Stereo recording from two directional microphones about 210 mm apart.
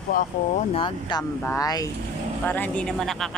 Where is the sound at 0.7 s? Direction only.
20° left (ahead or behind).